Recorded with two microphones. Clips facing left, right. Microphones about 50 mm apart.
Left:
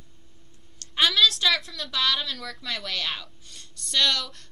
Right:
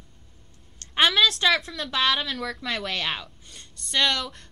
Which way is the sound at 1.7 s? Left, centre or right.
Right.